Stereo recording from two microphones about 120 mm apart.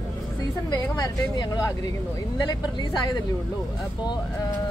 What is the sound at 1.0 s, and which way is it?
Speech, 30° left (ahead or behind).